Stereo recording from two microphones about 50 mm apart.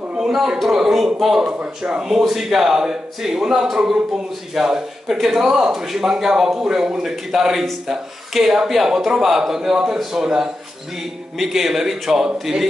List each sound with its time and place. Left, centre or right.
0.2 s speech: centre